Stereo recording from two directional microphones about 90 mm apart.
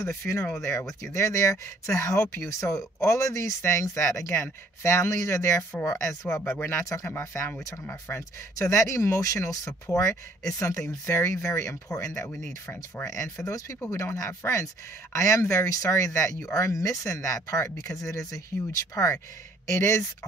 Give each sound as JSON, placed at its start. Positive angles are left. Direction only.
{"t": 0.0, "sound": "speech", "side_deg": 30}
{"t": 5.6, "sound": "speech", "side_deg": 20}